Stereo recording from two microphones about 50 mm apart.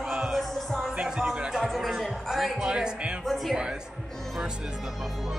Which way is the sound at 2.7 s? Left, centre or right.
Centre.